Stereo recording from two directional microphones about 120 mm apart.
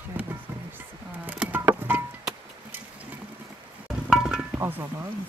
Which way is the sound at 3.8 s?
5° right (ahead or behind).